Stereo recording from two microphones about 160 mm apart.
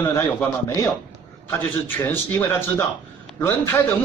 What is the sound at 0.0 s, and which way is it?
A man's voice, 15° left (ahead or behind).